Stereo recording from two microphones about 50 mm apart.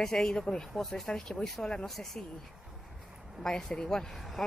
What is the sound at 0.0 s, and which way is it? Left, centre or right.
Speech, centre.